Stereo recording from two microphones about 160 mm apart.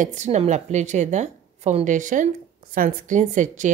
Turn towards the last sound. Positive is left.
turn(degrees=-50)  # may be behind; listen again after turning